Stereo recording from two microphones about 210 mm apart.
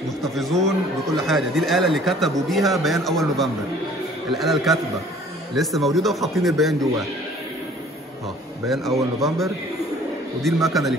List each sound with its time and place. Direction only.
0.2 s a man's voice: centre (ahead or behind)
8.6 s a man's voice: centre (ahead or behind)